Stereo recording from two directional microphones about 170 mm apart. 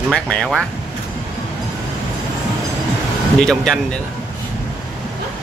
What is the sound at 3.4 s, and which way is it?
Speech, 5° left (ahead or behind).